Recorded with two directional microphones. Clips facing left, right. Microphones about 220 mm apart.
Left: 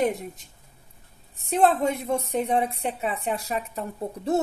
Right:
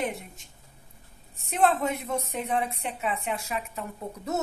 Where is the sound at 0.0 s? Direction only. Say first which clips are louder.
Left 7 dB; 40° left (ahead or behind).